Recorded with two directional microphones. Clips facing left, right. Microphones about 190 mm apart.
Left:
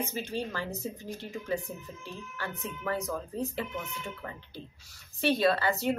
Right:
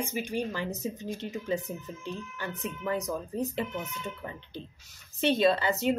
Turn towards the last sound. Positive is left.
turn(degrees=-20)  # may be behind; listen again after turning